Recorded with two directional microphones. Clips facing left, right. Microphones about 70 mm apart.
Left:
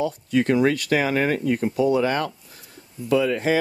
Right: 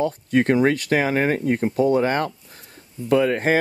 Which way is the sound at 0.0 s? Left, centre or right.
Right.